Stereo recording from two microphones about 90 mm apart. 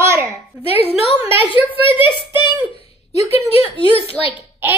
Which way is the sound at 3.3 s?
90° left.